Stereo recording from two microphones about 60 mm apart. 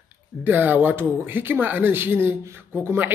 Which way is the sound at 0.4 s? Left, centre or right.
Right.